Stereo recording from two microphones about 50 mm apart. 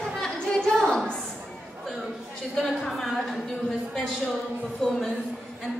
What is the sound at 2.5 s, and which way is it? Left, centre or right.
Speech, centre.